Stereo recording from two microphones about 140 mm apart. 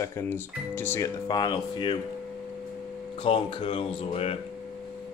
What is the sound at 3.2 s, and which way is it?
Speech, 40° left (ahead or behind).